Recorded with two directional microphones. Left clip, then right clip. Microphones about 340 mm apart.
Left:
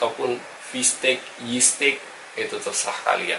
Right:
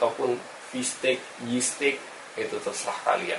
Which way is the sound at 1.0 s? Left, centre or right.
Centre.